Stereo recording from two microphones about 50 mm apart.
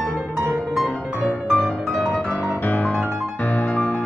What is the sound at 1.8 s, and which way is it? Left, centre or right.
Music, centre.